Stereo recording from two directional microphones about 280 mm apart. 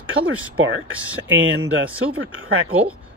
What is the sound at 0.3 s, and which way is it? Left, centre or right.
Speech, right.